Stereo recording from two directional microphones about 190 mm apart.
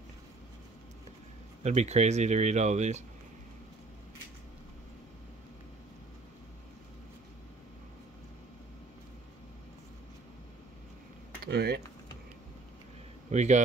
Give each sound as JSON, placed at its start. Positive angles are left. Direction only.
{"t": 1.6, "sound": "speech", "side_deg": -35}
{"t": 11.4, "sound": "speech", "side_deg": -60}
{"t": 13.3, "sound": "speech", "side_deg": -40}